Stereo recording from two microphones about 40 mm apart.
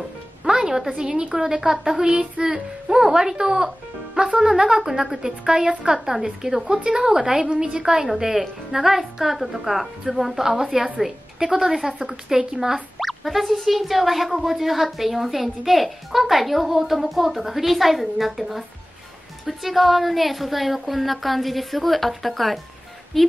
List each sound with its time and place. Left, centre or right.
0.4 s a woman's voice: centre
8.1 s speech: centre